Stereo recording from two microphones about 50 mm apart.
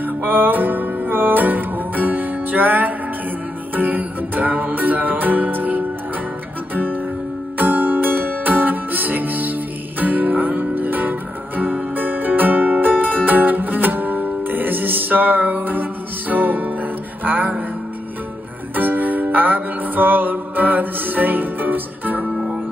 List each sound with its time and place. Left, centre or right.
0.0 s music: right
18.8 s music: right